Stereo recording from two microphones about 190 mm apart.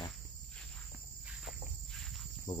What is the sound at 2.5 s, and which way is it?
Cricket, 25° left (ahead or behind).